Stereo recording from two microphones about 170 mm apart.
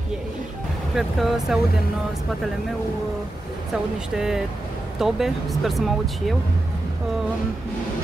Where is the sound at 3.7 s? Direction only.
5° right (ahead or behind).